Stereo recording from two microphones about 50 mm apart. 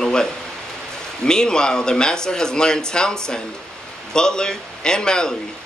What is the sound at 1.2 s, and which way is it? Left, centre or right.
A man's voice, centre.